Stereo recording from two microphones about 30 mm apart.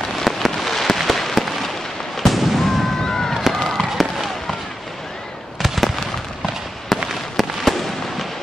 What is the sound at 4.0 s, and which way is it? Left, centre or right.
Fireworks, centre.